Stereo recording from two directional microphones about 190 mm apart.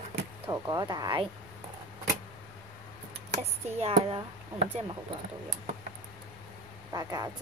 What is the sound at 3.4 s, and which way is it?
Speech, 30° right (ahead or behind).